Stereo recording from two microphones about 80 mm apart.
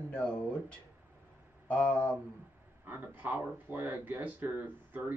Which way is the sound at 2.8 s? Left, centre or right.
Right.